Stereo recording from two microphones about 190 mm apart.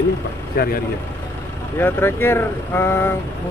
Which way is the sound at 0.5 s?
50° left (ahead or behind).